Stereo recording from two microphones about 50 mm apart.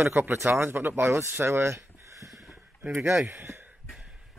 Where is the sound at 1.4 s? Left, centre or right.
Right.